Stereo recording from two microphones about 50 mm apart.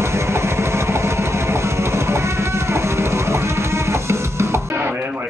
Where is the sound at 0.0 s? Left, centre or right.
Right.